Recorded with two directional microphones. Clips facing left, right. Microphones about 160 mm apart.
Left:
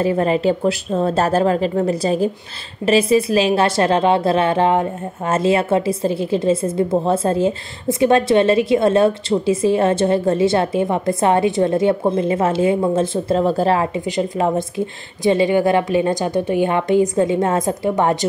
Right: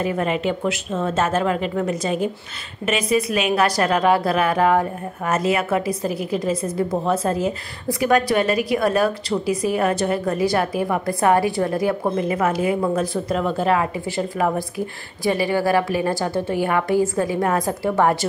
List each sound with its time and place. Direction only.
0.0 s a woman's voice: 30° left (ahead or behind)
14.0 s a woman's voice: 20° left (ahead or behind)